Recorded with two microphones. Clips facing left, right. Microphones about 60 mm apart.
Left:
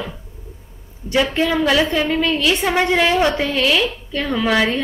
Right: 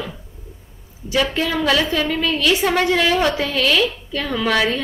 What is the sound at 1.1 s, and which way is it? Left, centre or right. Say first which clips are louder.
A woman's voice: left 2 dB; centre.